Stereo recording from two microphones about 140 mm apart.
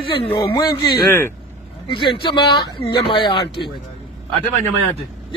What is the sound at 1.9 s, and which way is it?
Speech, 35° left (ahead or behind).